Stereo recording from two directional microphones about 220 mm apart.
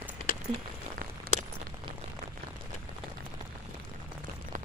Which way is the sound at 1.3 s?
45° right (ahead or behind).